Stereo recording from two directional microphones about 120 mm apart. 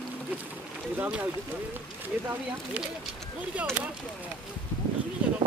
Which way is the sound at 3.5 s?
10° right (ahead or behind).